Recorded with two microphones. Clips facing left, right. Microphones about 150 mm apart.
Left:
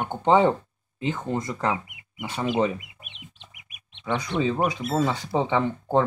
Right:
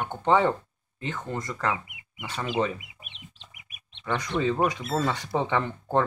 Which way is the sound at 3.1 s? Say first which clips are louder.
Left 2 dB; 5° left (ahead or behind).